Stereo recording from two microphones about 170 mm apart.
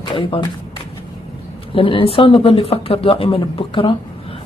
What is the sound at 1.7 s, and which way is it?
A woman's voice, 30° left (ahead or behind).